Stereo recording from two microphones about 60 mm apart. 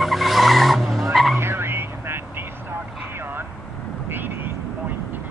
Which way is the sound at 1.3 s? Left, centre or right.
Right.